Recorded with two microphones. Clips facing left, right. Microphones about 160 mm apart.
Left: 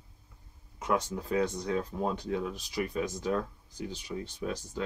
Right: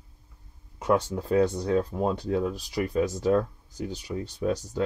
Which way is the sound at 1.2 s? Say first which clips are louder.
Right 6 dB; 35° right (ahead or behind).